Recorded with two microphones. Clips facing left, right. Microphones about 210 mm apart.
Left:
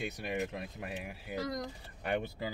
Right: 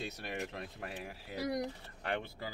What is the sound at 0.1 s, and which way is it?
Speech, 20° left (ahead or behind).